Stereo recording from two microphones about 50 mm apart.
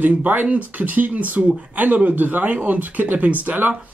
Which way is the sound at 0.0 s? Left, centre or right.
Right.